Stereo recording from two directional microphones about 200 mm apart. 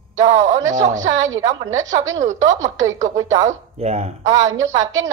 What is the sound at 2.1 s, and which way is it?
Speech, 35° right (ahead or behind).